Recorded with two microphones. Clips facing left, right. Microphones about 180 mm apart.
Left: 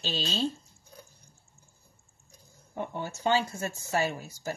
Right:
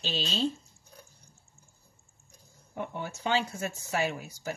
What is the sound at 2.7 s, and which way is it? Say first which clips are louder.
Speech: left 1 dB; 35° left (ahead or behind).